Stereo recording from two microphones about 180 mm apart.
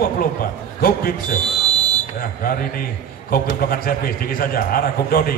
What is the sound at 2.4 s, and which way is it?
A man's voice, 55° left (ahead or behind).